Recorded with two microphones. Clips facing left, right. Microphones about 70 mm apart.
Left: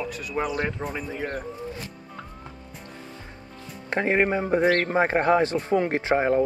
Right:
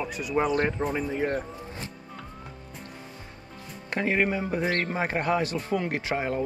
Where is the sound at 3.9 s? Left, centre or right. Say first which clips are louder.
Left 3 dB; left.